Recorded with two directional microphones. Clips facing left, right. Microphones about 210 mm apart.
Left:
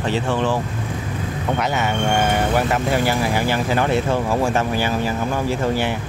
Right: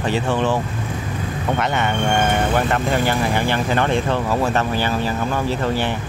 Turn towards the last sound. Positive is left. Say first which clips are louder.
# even
turn(degrees=10)  # may be behind; listen again after turning